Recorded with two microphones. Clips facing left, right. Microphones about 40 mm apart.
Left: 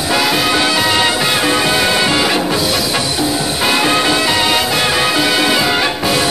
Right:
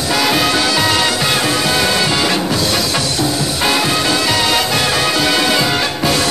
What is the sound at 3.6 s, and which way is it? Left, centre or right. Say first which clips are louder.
Swing music: left 1 dB; centre.